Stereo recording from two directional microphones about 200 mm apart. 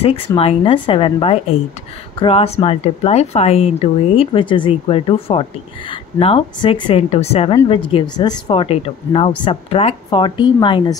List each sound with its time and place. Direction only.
0.4 s speech: 25° left (ahead or behind)